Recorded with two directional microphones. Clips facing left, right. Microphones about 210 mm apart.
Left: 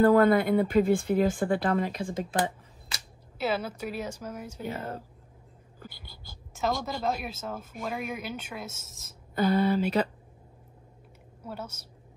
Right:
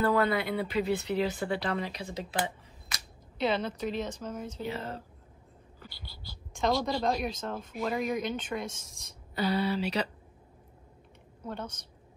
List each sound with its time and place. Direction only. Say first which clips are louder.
0.0 s speech: left 7 dB; 50° left (ahead or behind)
3.3 s a woman's voice: even; 5° left (ahead or behind)
4.6 s speech: left 5 dB; 50° left (ahead or behind)
6.5 s a woman's voice: right 2 dB; 5° left (ahead or behind)
9.3 s speech: left 5 dB; 50° left (ahead or behind)
11.4 s a woman's voice: right 1 dB; 5° left (ahead or behind)